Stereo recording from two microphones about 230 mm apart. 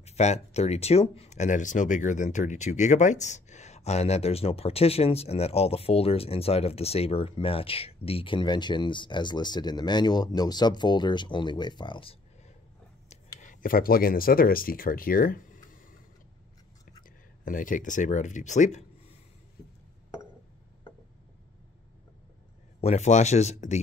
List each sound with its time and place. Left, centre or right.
0.0 s speech: left
13.1 s speech: left
17.5 s speech: left
22.8 s speech: left